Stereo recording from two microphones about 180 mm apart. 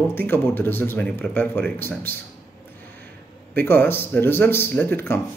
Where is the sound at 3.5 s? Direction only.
10° left (ahead or behind).